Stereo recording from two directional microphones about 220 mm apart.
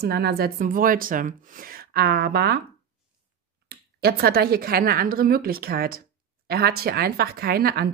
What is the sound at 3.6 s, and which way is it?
Speech, 45° right (ahead or behind).